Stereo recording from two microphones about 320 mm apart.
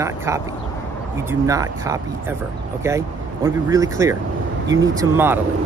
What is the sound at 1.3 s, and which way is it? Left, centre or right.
Speech, centre.